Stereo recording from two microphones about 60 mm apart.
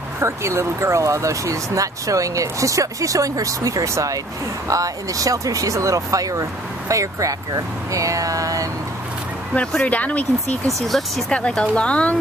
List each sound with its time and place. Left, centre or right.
0.2 s speech: right
9.6 s speech: centre
9.8 s a woman's voice: left
10.9 s speech: centre
11.2 s a woman's voice: centre